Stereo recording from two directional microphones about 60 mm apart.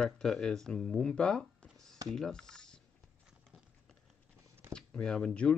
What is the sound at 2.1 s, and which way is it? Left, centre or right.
Speech, centre.